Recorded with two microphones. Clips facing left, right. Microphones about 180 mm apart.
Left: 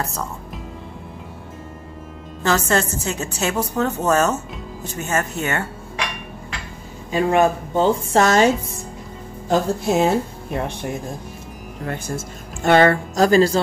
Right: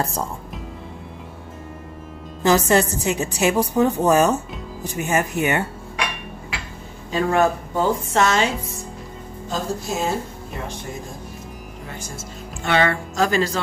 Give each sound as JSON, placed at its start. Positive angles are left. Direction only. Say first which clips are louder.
{"t": 0.0, "sound": "speech", "louder": "right 2 dB", "side_deg": -30}
{"t": 2.4, "sound": "a woman's voice", "louder": "right 3 dB", "side_deg": -15}
{"t": 7.1, "sound": "speech", "louder": "left 2 dB", "side_deg": 15}
{"t": 9.5, "sound": "speech", "louder": "left 7 dB", "side_deg": 60}
{"t": 11.8, "sound": "speech", "louder": "left 9 dB", "side_deg": 60}
{"t": 12.6, "sound": "speech", "louder": "left 6 dB", "side_deg": 40}